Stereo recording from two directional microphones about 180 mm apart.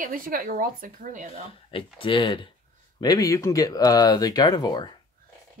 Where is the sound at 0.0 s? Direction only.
50° right (ahead or behind).